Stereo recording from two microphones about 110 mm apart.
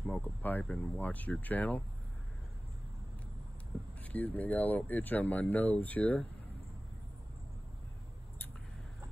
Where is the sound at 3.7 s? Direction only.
10° left (ahead or behind).